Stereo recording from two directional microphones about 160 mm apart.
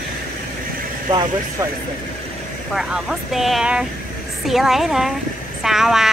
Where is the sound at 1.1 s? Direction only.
25° right (ahead or behind).